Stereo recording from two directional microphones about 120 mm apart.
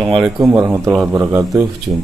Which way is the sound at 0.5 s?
25° right (ahead or behind).